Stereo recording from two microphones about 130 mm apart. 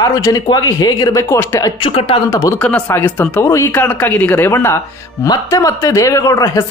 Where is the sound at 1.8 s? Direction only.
45° left (ahead or behind).